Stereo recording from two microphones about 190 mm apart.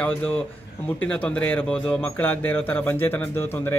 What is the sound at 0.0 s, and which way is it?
Speech, 5° left (ahead or behind).